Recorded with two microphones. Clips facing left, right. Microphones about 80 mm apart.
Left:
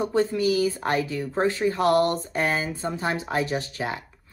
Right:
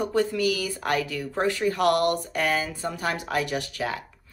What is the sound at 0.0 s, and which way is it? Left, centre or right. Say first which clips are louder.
Speech: left 1 dB; left.